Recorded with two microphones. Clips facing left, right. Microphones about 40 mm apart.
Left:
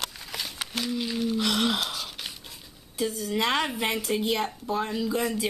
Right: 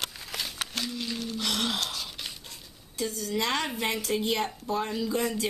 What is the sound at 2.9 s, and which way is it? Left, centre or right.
A woman's voice, centre.